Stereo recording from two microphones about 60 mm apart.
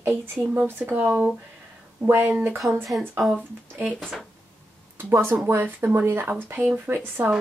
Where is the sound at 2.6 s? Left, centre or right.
Right.